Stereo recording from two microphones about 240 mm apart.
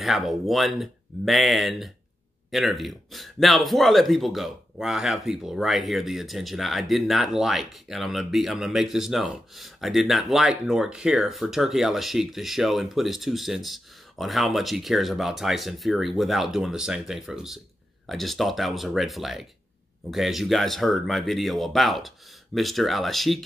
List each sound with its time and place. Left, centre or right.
0.0 s speech: centre